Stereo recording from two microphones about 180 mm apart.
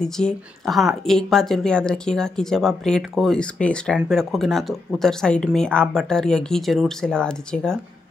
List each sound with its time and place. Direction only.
0.0 s speech: centre (ahead or behind)